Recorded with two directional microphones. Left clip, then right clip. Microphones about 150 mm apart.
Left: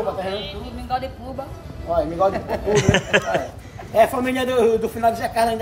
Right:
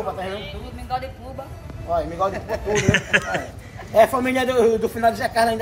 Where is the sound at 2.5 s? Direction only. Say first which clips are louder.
Left 2 dB; 20° left (ahead or behind).